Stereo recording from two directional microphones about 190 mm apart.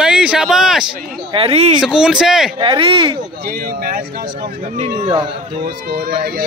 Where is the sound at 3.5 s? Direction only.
50° right (ahead or behind).